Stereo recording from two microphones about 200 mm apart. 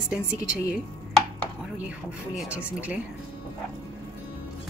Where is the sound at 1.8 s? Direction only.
5° right (ahead or behind).